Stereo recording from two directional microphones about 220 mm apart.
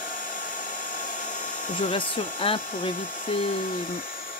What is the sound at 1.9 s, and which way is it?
Hair dryer, 25° left (ahead or behind).